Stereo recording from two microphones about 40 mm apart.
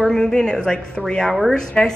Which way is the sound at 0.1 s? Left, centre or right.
Centre.